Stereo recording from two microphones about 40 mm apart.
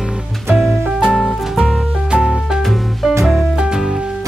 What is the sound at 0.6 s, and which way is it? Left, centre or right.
Music, centre.